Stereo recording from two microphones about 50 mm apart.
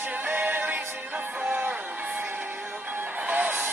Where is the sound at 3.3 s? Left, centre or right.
Right.